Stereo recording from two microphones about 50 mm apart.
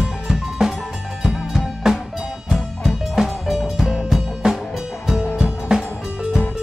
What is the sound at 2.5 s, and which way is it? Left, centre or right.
Music, centre.